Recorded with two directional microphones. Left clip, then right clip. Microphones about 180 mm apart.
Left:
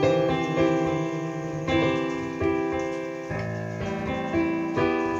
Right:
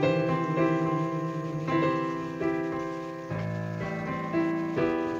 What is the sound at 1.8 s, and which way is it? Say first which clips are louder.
Music: left 2 dB; 20° left (ahead or behind).